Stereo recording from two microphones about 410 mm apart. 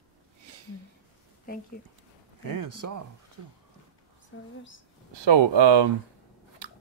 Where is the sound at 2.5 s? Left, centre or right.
Right.